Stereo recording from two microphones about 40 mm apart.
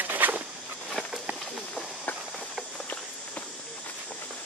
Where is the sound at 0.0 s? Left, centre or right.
Right.